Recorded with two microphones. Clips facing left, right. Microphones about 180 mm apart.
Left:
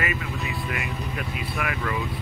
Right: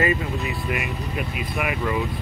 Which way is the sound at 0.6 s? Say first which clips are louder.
Right 3 dB; 20° right (ahead or behind).